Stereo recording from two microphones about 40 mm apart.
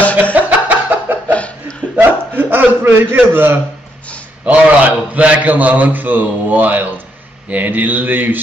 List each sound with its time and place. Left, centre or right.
0.0 s music: left
0.3 s a sound: right
1.3 s chuckle: left
2.0 s a sound: right
2.8 s a man's voice: right
4.5 s a man's voice: right